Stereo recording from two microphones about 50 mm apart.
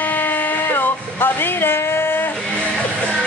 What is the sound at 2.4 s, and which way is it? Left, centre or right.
Music, left.